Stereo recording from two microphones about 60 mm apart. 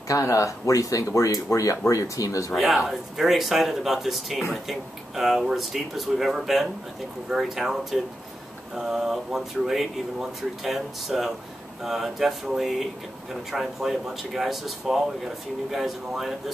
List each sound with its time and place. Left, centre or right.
0.1 s speech: left
2.5 s speech: centre